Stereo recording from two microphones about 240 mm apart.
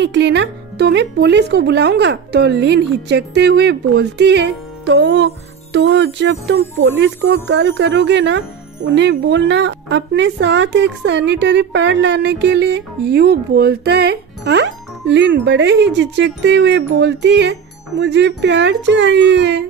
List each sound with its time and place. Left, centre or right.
0.0 s speech: right